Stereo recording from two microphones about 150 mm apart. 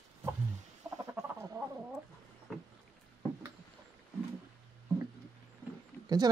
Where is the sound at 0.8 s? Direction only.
20° right (ahead or behind).